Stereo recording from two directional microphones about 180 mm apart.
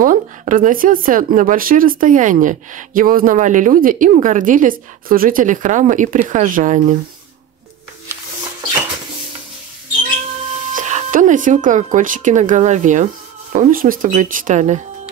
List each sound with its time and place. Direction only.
0.0 s speech: 50° right (ahead or behind)
10.7 s speech: 40° right (ahead or behind)